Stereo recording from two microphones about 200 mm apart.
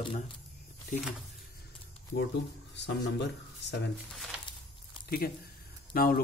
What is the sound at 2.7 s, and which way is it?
Speech, 60° left (ahead or behind).